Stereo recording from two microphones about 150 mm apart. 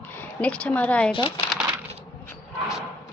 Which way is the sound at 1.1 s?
35° left (ahead or behind).